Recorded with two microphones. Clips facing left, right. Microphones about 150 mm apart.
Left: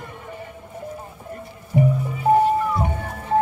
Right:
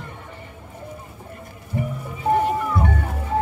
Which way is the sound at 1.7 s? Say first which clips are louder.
Left 7 dB; 15° left (ahead or behind).